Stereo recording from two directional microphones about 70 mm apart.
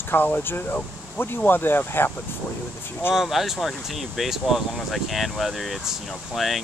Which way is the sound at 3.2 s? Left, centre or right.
Centre.